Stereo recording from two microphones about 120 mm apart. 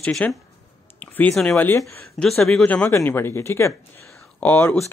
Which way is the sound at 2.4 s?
5° left (ahead or behind).